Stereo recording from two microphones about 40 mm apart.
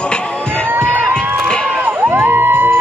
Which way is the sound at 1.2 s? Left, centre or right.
Right.